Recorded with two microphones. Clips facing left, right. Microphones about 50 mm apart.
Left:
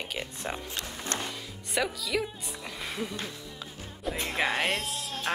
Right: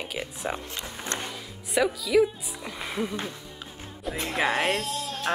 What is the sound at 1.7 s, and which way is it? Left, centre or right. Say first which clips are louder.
Speech: right 7 dB; centre.